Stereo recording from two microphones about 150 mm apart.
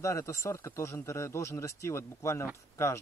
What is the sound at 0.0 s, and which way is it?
Speech, 20° left (ahead or behind).